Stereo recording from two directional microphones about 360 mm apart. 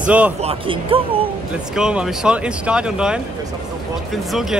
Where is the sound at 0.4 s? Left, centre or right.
Centre.